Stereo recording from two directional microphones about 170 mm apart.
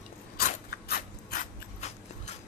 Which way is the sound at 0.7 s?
60° left (ahead or behind).